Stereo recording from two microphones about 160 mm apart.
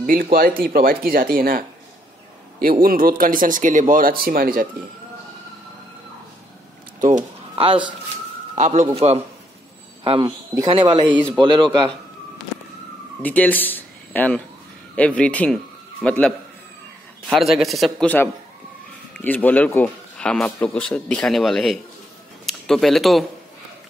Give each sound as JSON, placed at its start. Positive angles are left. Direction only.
{"t": 0.0, "sound": "speech", "side_deg": -65}
{"t": 2.8, "sound": "speech", "side_deg": -65}
{"t": 7.0, "sound": "speech", "side_deg": -50}
{"t": 7.5, "sound": "speech", "side_deg": -35}
{"t": 8.5, "sound": "a man's voice", "side_deg": -45}
{"t": 10.0, "sound": "a man's voice", "side_deg": -30}
{"t": 10.7, "sound": "speech", "side_deg": -35}
{"t": 13.2, "sound": "a man's voice", "side_deg": 10}
{"t": 18.0, "sound": "a man's voice", "side_deg": 10}